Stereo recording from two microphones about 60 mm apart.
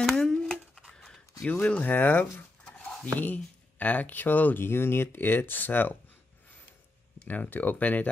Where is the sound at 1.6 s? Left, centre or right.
Left.